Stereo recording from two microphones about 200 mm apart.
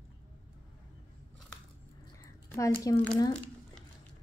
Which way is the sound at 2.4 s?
15° left (ahead or behind).